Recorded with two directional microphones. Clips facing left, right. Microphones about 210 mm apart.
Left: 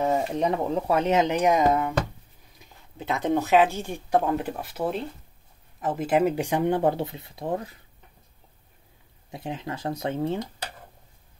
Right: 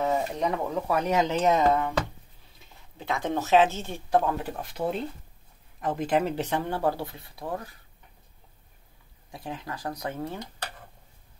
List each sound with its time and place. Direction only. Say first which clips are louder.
0.0 s speech: left 3 dB; 25° left (ahead or behind)
9.3 s speech: left 4 dB; 20° left (ahead or behind)